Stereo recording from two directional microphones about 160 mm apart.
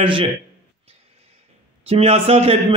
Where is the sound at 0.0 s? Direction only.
35° right (ahead or behind).